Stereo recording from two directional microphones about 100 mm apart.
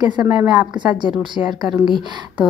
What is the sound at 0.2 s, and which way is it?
Speech, 15° right (ahead or behind).